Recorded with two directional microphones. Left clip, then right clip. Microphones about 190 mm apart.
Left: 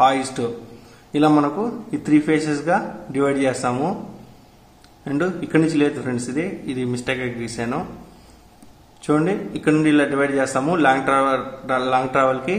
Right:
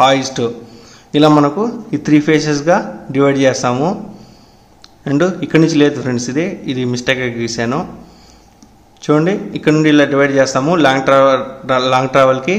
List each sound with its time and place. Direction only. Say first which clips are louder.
0.0 s a man's voice: right 6 dB; 25° right (ahead or behind)
5.0 s a man's voice: right 8 dB; 25° right (ahead or behind)
9.0 s a man's voice: right 6 dB; 20° right (ahead or behind)